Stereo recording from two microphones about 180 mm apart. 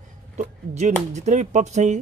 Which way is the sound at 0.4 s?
40° right (ahead or behind).